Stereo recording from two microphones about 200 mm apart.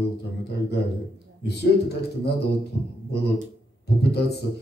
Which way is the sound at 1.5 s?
55° left (ahead or behind).